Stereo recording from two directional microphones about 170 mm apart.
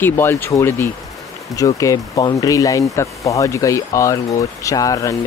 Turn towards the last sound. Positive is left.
turn(degrees=20)  # may be behind; listen again after turning